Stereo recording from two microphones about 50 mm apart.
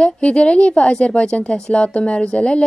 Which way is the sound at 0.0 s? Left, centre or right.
Left.